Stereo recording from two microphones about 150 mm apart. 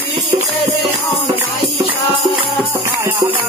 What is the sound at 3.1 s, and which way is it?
Music, 15° right (ahead or behind).